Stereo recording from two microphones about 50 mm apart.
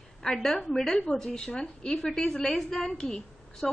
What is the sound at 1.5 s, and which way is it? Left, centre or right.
Speech, left.